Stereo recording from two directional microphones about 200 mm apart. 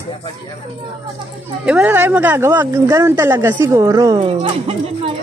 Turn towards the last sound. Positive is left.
turn(degrees=-30)  # may be behind; listen again after turning